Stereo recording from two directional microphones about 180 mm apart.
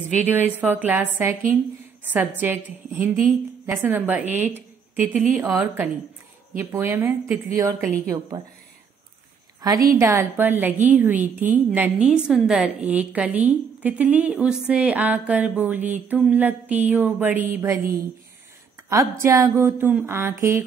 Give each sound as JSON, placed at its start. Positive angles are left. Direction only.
{"t": 0.3, "sound": "a woman's voice", "side_deg": -10}
{"t": 9.6, "sound": "a woman's voice", "side_deg": -20}
{"t": 18.9, "sound": "a woman's voice", "side_deg": -15}